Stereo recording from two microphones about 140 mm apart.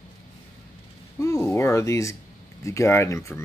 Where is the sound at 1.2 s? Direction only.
20° left (ahead or behind).